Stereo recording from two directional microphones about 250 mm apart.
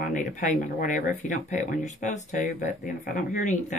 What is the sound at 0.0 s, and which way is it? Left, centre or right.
Speech, left.